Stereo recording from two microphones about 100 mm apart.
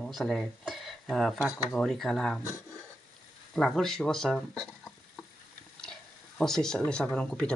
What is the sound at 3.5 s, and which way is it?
Speech, 5° left (ahead or behind).